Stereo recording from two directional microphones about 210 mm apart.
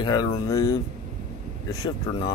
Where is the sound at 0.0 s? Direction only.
20° left (ahead or behind).